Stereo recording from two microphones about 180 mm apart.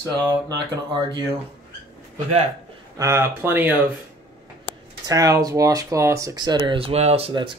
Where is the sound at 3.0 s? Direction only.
15° right (ahead or behind).